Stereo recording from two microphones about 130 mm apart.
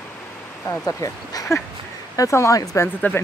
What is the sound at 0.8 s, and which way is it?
Speech, 25° left (ahead or behind).